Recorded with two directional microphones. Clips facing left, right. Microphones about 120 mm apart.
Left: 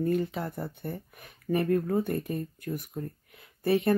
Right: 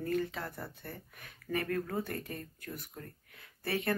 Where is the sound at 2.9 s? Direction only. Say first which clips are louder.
Left 11 dB; 20° left (ahead or behind).